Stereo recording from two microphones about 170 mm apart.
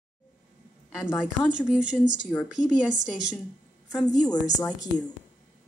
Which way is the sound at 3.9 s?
20° left (ahead or behind).